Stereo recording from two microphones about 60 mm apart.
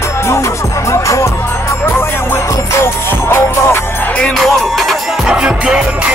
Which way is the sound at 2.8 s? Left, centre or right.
Left.